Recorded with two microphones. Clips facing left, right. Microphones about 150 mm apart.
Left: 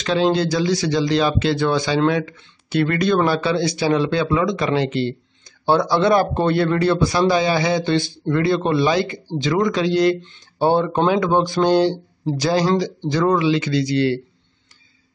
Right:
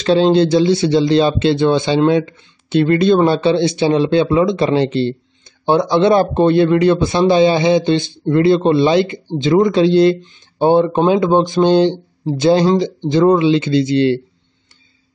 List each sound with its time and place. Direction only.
0.0 s speech: 30° right (ahead or behind)
10.2 s speech: 15° right (ahead or behind)